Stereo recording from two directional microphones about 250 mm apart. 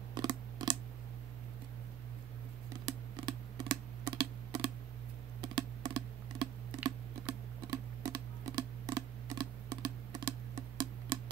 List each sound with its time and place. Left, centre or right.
0.1 s a sound: centre
2.8 s computer keyboard: centre
5.4 s typing: centre